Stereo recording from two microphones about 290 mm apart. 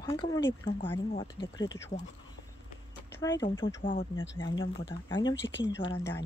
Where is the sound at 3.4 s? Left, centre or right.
Centre.